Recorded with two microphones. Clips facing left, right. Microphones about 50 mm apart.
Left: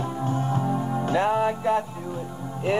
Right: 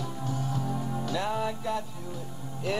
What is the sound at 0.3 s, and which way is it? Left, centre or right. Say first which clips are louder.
Music: left 6 dB; left.